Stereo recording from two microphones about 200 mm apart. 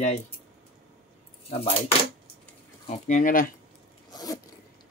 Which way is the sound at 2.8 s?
35° left (ahead or behind).